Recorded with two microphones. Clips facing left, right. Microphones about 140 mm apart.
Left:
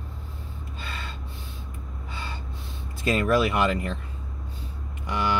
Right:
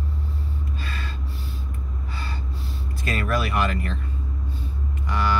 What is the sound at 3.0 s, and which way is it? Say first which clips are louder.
Speech: left 4 dB; 25° left (ahead or behind).